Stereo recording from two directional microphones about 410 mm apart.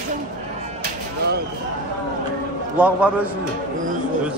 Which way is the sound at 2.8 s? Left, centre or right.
Centre.